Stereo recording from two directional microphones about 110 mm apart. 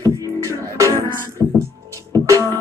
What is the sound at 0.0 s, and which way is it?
Music, 30° right (ahead or behind).